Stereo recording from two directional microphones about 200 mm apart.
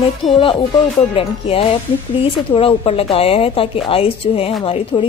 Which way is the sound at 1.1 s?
30° left (ahead or behind).